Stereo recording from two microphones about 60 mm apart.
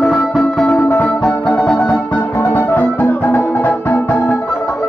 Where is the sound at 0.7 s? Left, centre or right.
Left.